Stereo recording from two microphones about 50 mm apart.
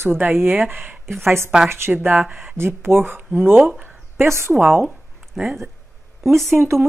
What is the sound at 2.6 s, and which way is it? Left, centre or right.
Speech, right.